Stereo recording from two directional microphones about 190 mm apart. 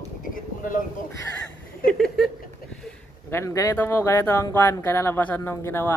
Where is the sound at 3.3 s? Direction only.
15° left (ahead or behind).